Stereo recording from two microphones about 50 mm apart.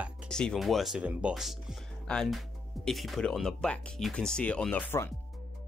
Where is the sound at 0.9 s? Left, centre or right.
Right.